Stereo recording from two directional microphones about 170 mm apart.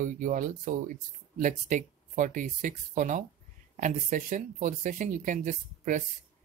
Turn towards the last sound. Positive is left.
turn(degrees=-50)  # may be behind; listen again after turning